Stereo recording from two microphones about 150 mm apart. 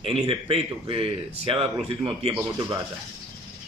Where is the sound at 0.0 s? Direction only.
40° right (ahead or behind).